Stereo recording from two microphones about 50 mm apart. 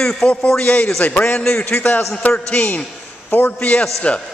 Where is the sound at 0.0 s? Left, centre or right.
Centre.